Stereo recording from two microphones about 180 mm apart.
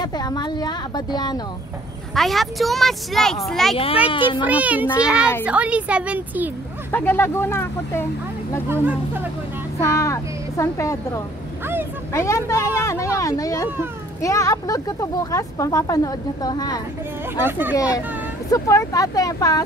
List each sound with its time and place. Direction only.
0.0 s speech: 20° left (ahead or behind)
2.1 s a woman's voice: centre (ahead or behind)
3.7 s a child's voice: 30° left (ahead or behind)
4.5 s a woman's voice: 10° right (ahead or behind)
6.9 s speech: 10° left (ahead or behind)
8.6 s a woman's voice: 10° right (ahead or behind)
9.8 s a woman's voice: 15° left (ahead or behind)
17.5 s a woman's voice: 10° right (ahead or behind)
18.5 s speech: 20° left (ahead or behind)